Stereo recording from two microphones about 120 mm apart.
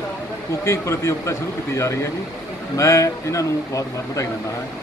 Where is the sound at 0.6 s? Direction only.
25° left (ahead or behind).